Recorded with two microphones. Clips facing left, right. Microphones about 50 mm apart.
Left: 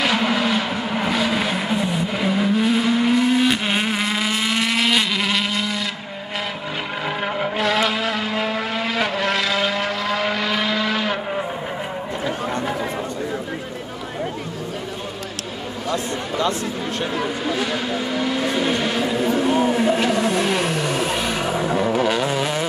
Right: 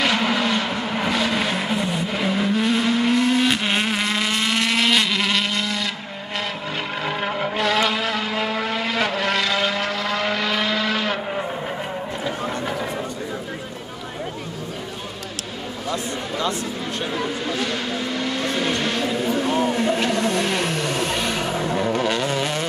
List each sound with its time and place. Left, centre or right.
0.0 s vehicle: centre
7.1 s vehicle: centre
15.9 s a sound: left
17.1 s vehicle: centre